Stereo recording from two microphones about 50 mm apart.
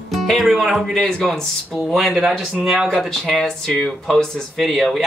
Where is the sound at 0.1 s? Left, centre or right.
Centre.